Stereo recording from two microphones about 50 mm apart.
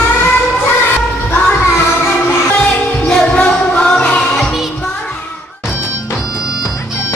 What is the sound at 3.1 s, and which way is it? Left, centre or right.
Music, left.